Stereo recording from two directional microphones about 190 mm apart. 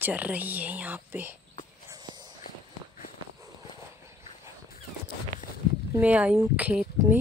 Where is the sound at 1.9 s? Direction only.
20° right (ahead or behind).